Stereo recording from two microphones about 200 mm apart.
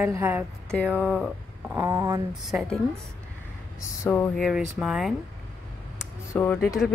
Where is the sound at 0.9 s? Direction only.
Centre (ahead or behind).